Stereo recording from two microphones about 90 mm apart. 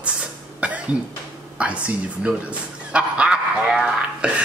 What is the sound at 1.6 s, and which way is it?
Speech, 15° right (ahead or behind).